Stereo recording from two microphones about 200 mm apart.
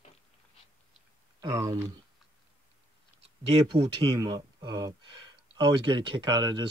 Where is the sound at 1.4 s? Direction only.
15° right (ahead or behind).